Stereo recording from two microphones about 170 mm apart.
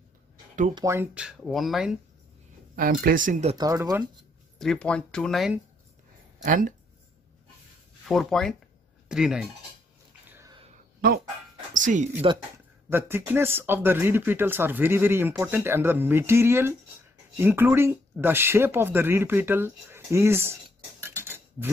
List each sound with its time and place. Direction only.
0.7 s speech: 15° right (ahead or behind)
1.1 s speech: 5° right (ahead or behind)
2.7 s speech: 55° right (ahead or behind)
3.5 s speech: 20° right (ahead or behind)
4.6 s speech: 5° left (ahead or behind)
6.4 s speech: 55° right (ahead or behind)
8.1 s speech: centre (ahead or behind)
11.7 s speech: 50° right (ahead or behind)
12.9 s speech: 10° right (ahead or behind)
21.0 s a sound: 15° right (ahead or behind)